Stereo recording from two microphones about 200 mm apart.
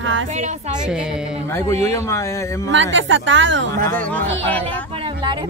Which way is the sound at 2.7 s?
70° right (ahead or behind).